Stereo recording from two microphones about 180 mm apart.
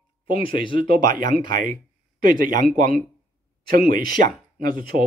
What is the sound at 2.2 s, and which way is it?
Speech, 50° right (ahead or behind).